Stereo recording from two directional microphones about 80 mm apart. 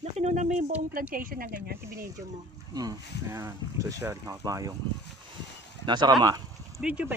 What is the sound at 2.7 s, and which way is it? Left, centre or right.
Speech, right.